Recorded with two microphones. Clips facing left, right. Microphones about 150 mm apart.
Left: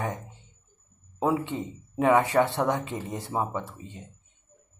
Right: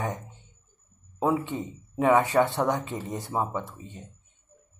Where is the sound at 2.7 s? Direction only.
25° left (ahead or behind).